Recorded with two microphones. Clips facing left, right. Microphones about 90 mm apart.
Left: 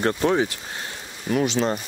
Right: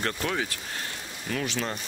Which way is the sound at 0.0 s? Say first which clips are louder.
Left 9 dB; 25° left (ahead or behind).